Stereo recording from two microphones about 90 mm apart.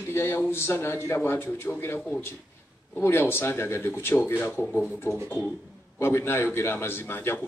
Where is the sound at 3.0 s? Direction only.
25° left (ahead or behind).